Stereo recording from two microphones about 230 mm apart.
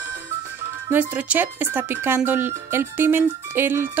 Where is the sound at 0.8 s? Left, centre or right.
Centre.